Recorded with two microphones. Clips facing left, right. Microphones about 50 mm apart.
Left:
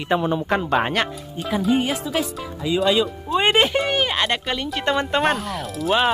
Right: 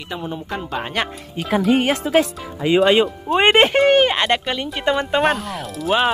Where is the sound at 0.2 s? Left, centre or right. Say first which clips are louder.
Left 6 dB; left.